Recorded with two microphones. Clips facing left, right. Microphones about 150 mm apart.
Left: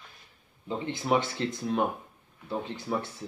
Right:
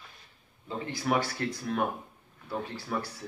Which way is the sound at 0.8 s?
25° left (ahead or behind).